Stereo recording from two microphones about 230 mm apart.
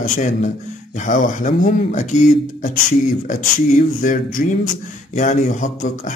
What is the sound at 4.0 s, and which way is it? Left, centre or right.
Speech, left.